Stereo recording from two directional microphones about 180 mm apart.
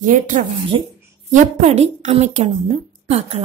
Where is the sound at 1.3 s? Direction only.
40° right (ahead or behind).